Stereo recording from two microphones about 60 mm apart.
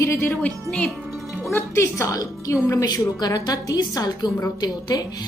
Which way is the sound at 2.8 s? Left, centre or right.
Left.